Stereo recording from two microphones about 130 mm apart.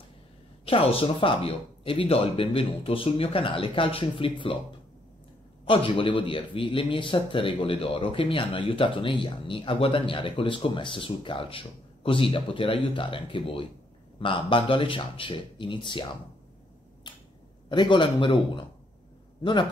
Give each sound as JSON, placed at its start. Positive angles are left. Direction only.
{"t": 0.7, "sound": "speech", "side_deg": 45}
{"t": 5.7, "sound": "a man's voice", "side_deg": 45}
{"t": 17.1, "sound": "finger snapping", "side_deg": 35}
{"t": 17.6, "sound": "a man's voice", "side_deg": 40}